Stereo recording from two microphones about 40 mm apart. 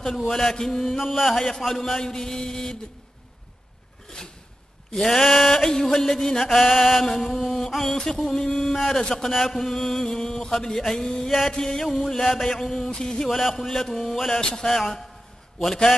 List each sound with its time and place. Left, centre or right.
0.0 s mantra: centre
4.9 s mantra: centre
9.1 s a sound: centre
9.5 s mantra: centre
12.9 s music: left
13.2 s a sound: centre
14.5 s mantra: centre